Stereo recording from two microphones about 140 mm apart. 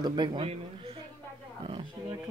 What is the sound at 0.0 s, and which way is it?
Speech, 30° right (ahead or behind).